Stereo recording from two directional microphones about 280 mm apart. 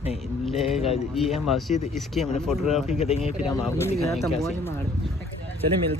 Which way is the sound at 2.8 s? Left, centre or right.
Left.